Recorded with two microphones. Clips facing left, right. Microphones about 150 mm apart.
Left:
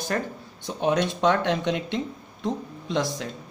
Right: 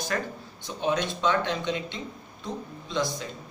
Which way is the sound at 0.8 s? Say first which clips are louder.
Left 4 dB; 55° left (ahead or behind).